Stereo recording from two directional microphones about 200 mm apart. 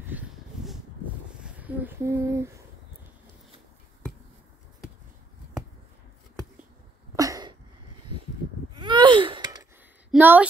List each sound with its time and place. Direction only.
0.1 s a sound: 10° right (ahead or behind)
1.4 s speech: 5° right (ahead or behind)
7.2 s sneeze: 20° right (ahead or behind)
8.7 s gasp: 25° right (ahead or behind)
10.1 s speech: 10° right (ahead or behind)